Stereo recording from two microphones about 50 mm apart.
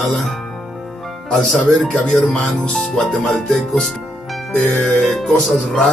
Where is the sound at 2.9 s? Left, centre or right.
Left.